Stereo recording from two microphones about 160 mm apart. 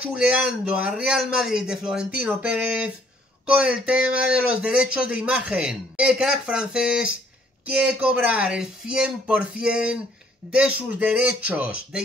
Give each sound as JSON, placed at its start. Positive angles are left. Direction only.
{"t": 0.0, "sound": "a man's voice", "side_deg": -5}